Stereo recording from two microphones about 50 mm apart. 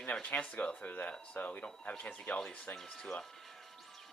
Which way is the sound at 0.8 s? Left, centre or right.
Left.